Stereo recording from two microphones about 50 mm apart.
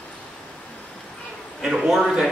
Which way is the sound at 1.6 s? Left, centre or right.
Centre.